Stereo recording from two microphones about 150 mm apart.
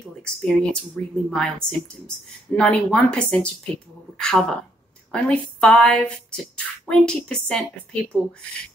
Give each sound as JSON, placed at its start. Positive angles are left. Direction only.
{"t": 0.2, "sound": "speech", "side_deg": 5}